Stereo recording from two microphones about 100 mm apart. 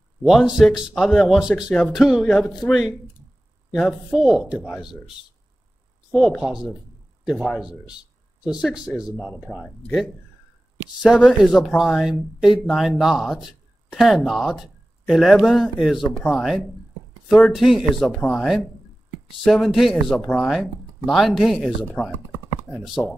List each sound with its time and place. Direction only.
0.2 s speech: centre (ahead or behind)
4.6 s speech: 10° left (ahead or behind)
6.4 s speech: 5° right (ahead or behind)
11.0 s speech: centre (ahead or behind)
22.0 s speech: 15° left (ahead or behind)
23.0 s speech: 5° left (ahead or behind)